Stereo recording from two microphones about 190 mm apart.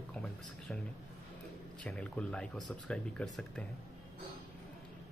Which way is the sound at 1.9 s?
5° left (ahead or behind).